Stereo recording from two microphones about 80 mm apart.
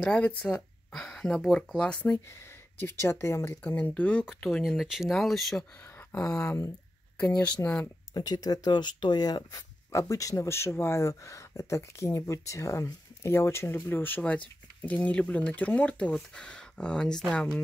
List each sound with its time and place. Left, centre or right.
0.0 s speech: centre
0.6 s speech: centre
2.8 s speech: left
3.7 s speech: centre
4.5 s speech: centre
6.2 s speech: centre
7.6 s speech: left
8.1 s speech: left
9.9 s speech: left; by 17.5 s centre